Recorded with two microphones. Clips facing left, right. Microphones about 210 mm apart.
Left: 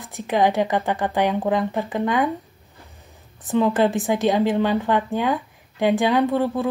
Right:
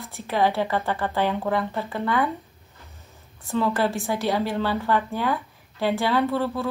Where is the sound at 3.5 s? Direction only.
20° left (ahead or behind).